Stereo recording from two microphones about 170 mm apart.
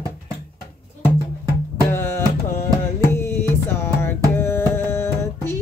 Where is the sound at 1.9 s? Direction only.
15° left (ahead or behind).